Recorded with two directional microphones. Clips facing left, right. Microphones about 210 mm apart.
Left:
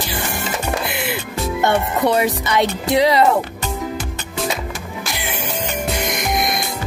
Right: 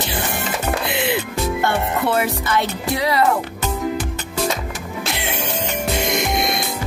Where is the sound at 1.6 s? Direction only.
20° left (ahead or behind).